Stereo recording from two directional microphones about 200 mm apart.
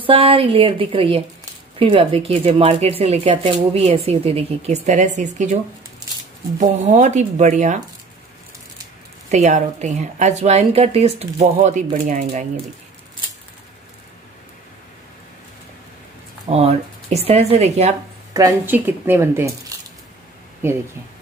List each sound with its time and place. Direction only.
0.0 s speech: 25° right (ahead or behind)
6.6 s a woman's voice: 35° right (ahead or behind)
9.3 s a woman's voice: 35° right (ahead or behind)
16.4 s a woman's voice: 30° right (ahead or behind)
18.3 s speech: 15° right (ahead or behind)
20.6 s speech: 10° right (ahead or behind)